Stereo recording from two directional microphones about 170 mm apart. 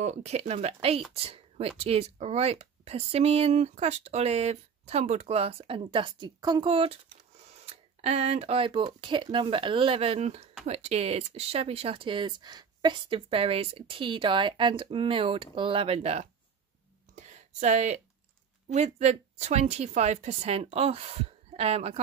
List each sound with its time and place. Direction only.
0.0 s a woman's voice: 40° right (ahead or behind)
17.1 s a sound: 45° right (ahead or behind)
18.7 s speech: 40° right (ahead or behind)